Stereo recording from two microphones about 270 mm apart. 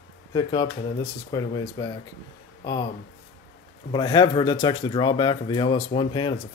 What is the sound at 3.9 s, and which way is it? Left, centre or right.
Speech, centre.